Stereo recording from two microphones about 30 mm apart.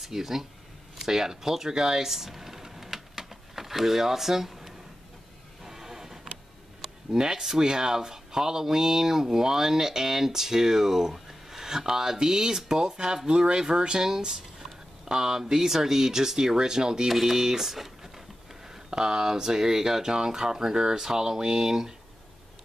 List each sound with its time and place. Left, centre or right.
0.0 s speech: centre
2.0 s a sound: centre
7.1 s speech: right
17.1 s speech: centre
18.9 s speech: right